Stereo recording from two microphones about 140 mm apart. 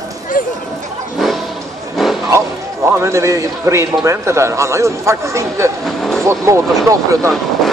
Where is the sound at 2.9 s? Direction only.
20° right (ahead or behind).